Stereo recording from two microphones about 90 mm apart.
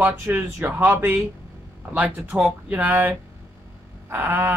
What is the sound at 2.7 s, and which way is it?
Speech, 20° right (ahead or behind).